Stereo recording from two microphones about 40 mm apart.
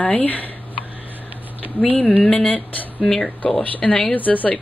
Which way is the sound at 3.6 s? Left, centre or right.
Left.